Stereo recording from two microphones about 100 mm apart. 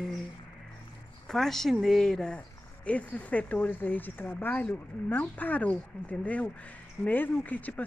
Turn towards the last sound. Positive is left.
turn(degrees=15)  # may be behind; listen again after turning